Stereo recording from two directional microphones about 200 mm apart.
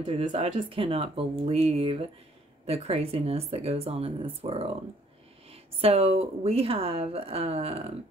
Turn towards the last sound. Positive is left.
turn(degrees=-30)  # may be behind; listen again after turning